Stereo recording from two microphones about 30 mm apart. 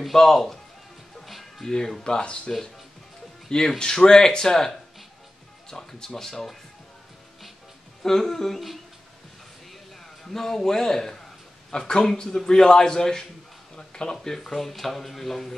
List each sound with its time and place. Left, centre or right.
0.1 s speech: centre
1.6 s a man's voice: centre
8.0 s speech: centre
10.3 s a man's voice: centre
14.2 s speech: centre